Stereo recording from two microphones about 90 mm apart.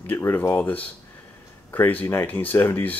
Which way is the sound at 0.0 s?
25° left (ahead or behind).